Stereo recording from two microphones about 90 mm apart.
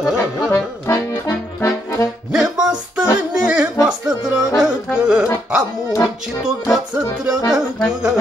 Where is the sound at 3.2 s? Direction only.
10° right (ahead or behind).